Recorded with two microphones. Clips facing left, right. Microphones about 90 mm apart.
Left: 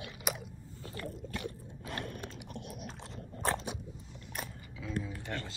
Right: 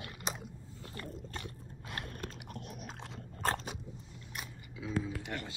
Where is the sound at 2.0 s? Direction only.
40° right (ahead or behind).